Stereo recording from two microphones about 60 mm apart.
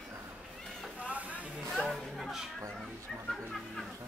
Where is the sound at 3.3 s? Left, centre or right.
Centre.